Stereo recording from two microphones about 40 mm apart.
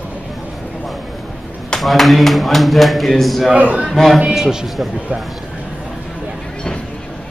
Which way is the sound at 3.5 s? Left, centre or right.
Right.